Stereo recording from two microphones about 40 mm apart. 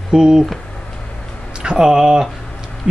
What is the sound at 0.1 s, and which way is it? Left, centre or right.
Speech, centre.